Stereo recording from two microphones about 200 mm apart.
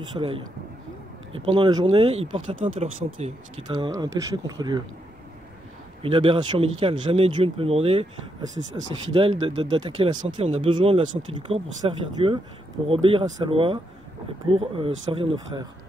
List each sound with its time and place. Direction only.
0.1 s speech: 25° right (ahead or behind)
1.4 s speech: 25° right (ahead or behind)
3.6 s speech: 20° right (ahead or behind)
6.0 s speech: 25° right (ahead or behind)